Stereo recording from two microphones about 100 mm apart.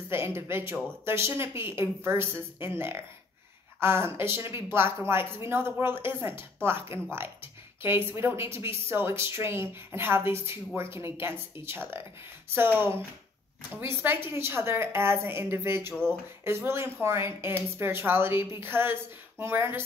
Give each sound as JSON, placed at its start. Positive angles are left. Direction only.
{"t": 0.1, "sound": "speech", "side_deg": -25}